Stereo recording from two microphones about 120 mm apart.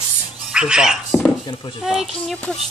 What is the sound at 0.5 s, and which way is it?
Speech, 5° right (ahead or behind).